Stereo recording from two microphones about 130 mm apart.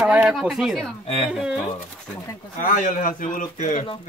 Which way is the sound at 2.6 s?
90° left.